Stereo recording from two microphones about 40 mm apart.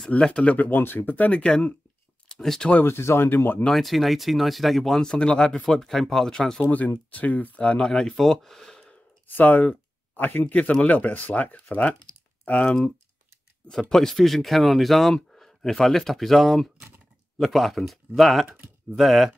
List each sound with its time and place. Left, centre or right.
0.1 s speech: left
0.6 s speech: left
2.2 s speech: centre
2.8 s speech: left
3.7 s speech: centre
5.0 s speech: left
5.5 s speech: centre
7.1 s speech: left
7.8 s speech: centre
8.2 s speech: centre
9.3 s speech: left
10.4 s speech: left
13.7 s speech: centre